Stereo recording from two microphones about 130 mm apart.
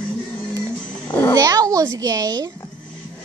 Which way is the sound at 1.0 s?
20° left (ahead or behind).